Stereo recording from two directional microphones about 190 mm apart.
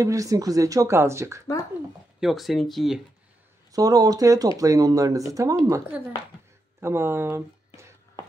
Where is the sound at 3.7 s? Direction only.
20° right (ahead or behind).